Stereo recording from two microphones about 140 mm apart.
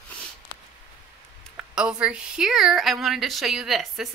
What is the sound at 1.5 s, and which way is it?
A woman's voice, 5° right (ahead or behind).